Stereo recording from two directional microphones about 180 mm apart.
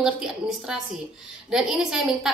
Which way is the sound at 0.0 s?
5° right (ahead or behind).